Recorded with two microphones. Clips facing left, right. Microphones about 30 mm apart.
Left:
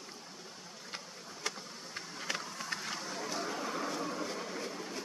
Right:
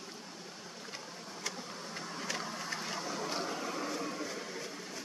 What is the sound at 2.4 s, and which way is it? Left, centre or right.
Vehicle, right.